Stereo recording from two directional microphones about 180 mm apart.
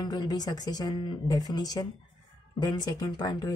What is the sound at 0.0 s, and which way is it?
Speech, 20° left (ahead or behind).